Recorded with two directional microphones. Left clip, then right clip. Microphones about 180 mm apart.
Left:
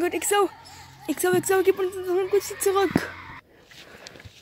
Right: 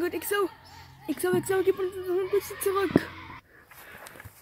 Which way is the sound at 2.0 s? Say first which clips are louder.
Left 4 dB; 25° right (ahead or behind).